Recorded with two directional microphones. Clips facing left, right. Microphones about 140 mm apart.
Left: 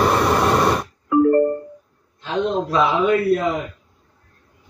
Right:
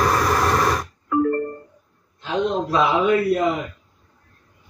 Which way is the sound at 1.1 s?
15° left (ahead or behind).